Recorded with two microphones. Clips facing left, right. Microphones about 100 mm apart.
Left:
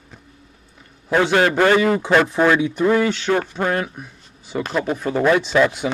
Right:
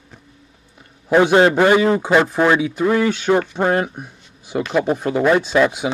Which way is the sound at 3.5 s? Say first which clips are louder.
Right 4 dB; 25° right (ahead or behind).